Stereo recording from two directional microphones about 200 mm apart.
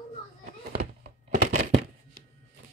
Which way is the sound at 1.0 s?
40° right (ahead or behind).